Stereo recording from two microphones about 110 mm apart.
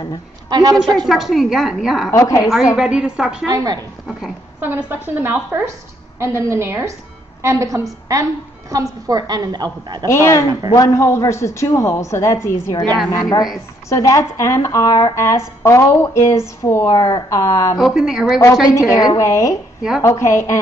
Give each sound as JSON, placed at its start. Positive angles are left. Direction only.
{"t": 0.5, "sound": "a woman's voice", "side_deg": -40}
{"t": 1.0, "sound": "a woman's voice", "side_deg": 0}
{"t": 2.0, "sound": "speech", "side_deg": 25}
{"t": 2.7, "sound": "a woman's voice", "side_deg": -5}
{"t": 3.4, "sound": "a woman's voice", "side_deg": -35}
{"t": 4.6, "sound": "a woman's voice", "side_deg": -20}
{"t": 10.0, "sound": "speech", "side_deg": 25}
{"t": 13.1, "sound": "a woman's voice", "side_deg": 35}
{"t": 17.7, "sound": "a woman's voice", "side_deg": -5}
{"t": 18.7, "sound": "speech", "side_deg": 30}